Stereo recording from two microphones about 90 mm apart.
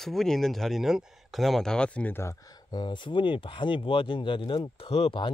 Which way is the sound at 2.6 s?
55° left (ahead or behind).